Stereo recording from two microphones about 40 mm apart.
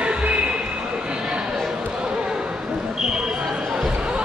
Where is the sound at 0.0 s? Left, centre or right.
Right.